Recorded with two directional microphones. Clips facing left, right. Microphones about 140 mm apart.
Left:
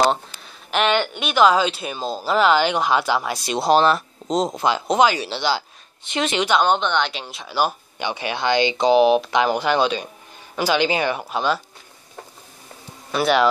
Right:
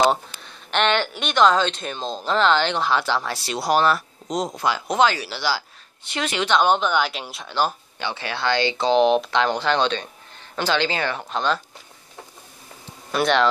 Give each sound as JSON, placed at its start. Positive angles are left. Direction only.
{"t": 0.0, "sound": "speech", "side_deg": 0}
{"t": 6.6, "sound": "speech", "side_deg": -5}
{"t": 13.1, "sound": "speech", "side_deg": 5}